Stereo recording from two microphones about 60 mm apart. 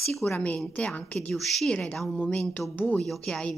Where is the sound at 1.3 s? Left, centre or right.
Centre.